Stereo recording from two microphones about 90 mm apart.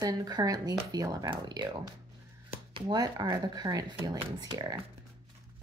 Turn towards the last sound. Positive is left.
turn(degrees=-50)  # may be behind; listen again after turning